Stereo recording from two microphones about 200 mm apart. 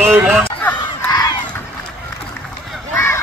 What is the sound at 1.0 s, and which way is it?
Crowd, 20° left (ahead or behind).